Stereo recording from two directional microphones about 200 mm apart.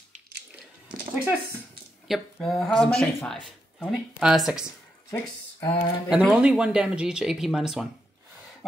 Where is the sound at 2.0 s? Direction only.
Centre (ahead or behind).